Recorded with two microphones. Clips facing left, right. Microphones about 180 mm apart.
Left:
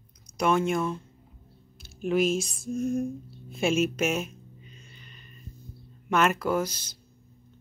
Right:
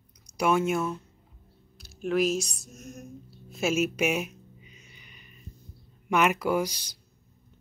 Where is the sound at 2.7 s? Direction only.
30° left (ahead or behind).